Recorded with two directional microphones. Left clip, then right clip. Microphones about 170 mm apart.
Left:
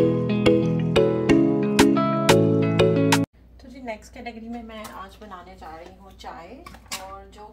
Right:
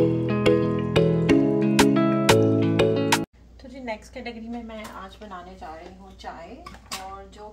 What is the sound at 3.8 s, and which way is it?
Speech, 25° right (ahead or behind).